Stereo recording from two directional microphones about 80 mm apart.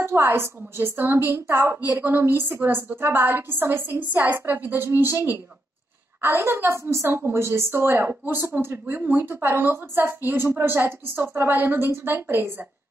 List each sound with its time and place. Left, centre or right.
0.0 s a woman's voice: right